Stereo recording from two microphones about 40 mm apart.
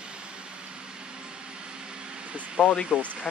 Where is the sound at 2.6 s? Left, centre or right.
Right.